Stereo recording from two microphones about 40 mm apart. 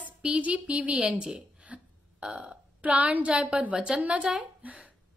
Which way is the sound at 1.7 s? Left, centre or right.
Right.